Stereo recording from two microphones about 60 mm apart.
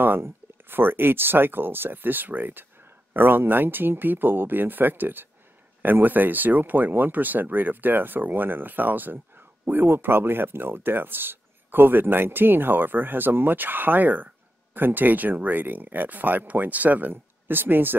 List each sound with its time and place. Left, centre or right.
0.0 s speech: right